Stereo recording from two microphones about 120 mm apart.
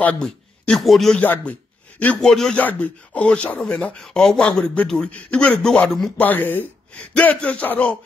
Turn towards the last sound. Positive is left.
turn(degrees=10)  # may be behind; listen again after turning